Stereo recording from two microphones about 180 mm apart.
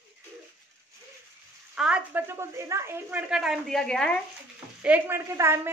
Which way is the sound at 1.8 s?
5° right (ahead or behind).